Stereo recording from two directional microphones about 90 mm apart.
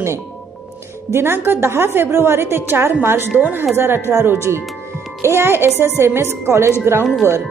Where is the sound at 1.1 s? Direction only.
25° right (ahead or behind).